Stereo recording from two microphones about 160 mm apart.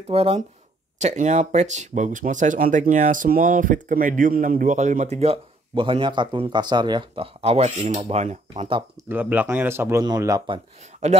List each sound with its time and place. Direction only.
0.1 s a man's voice: 35° right (ahead or behind)
0.9 s a man's voice: 50° right (ahead or behind)
9.1 s a man's voice: 10° right (ahead or behind)
11.0 s speech: 45° right (ahead or behind)